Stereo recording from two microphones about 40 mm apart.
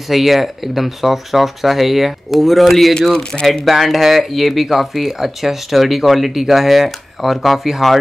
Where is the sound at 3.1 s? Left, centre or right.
Left.